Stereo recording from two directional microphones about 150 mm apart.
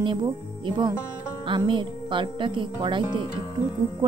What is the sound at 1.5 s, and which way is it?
Speech, 35° right (ahead or behind).